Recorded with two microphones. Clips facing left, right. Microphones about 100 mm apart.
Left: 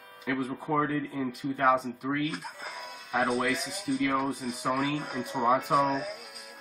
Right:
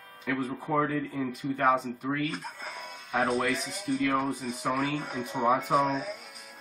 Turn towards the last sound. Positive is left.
turn(degrees=5)  # may be behind; listen again after turning